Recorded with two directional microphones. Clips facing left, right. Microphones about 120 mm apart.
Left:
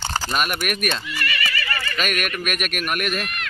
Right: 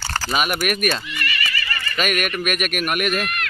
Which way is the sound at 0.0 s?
15° left (ahead or behind).